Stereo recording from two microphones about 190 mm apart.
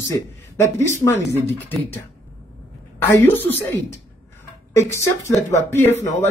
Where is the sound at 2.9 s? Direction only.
10° left (ahead or behind).